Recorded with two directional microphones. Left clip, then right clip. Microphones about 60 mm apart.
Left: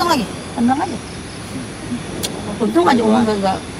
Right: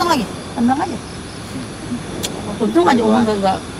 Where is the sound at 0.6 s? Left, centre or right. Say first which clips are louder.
Even; left.